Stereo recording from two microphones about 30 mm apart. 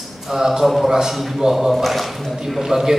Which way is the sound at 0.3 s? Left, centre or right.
Centre.